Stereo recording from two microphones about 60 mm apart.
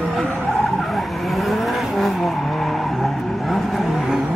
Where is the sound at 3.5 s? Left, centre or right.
Centre.